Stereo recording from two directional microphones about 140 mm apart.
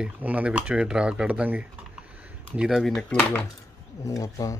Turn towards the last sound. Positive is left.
turn(degrees=25)  # may be behind; listen again after turning